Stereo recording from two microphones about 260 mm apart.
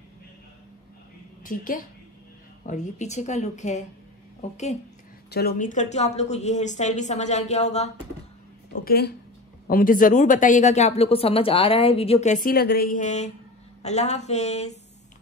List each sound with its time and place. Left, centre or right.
1.4 s a woman's voice: left
8.8 s speech: left